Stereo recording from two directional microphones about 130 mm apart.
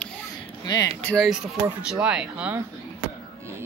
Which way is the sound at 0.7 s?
30° left (ahead or behind).